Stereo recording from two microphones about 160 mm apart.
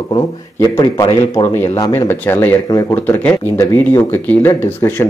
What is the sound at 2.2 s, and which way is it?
Speech, 10° left (ahead or behind).